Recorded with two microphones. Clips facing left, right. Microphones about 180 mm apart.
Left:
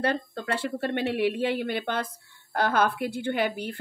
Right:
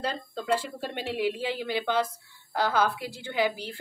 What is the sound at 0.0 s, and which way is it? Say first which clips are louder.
A woman's voice: left 5 dB; 65° left (ahead or behind).